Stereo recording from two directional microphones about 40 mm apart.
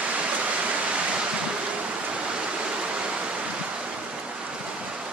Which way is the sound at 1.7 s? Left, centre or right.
Right.